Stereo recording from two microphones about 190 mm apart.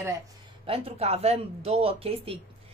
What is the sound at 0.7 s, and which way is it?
A woman's voice, 30° right (ahead or behind).